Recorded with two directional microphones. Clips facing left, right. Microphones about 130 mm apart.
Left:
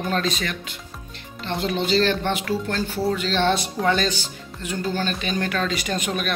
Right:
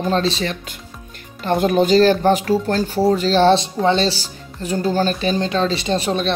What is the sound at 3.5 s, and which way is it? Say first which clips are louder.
Speech: right 5 dB; 25° right (ahead or behind).